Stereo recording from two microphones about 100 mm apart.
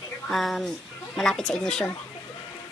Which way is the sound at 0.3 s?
Centre (ahead or behind).